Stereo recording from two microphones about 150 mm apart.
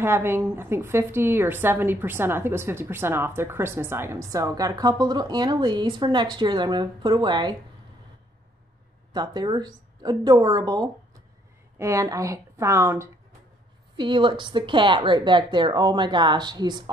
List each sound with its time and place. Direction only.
0.0 s a woman's voice: 15° right (ahead or behind)
9.1 s speech: 30° right (ahead or behind)
13.9 s speech: 30° right (ahead or behind)